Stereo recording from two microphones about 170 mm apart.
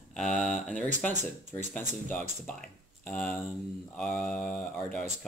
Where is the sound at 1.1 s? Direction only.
45° right (ahead or behind).